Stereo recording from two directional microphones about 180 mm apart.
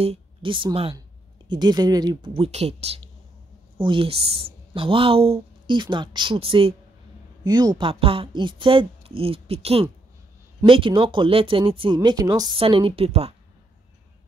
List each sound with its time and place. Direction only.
0.0 s speech: 30° right (ahead or behind)